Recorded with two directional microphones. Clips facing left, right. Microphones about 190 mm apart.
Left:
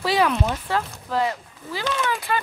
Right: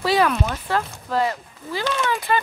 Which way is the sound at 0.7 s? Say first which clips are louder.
Right 4 dB; 10° left (ahead or behind).